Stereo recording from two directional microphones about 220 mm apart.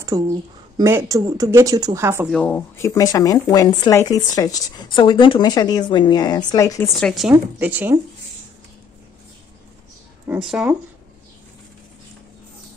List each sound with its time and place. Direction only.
0.0 s speech: 15° right (ahead or behind)
2.3 s speech: 5° left (ahead or behind)
7.0 s speech: centre (ahead or behind)
10.2 s speech: 5° right (ahead or behind)